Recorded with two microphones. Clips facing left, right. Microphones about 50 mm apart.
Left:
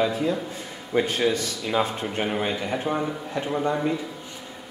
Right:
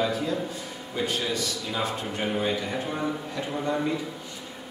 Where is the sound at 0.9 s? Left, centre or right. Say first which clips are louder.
Left 6 dB; left.